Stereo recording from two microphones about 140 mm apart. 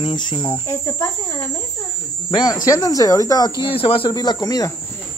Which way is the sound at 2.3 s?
30° left (ahead or behind).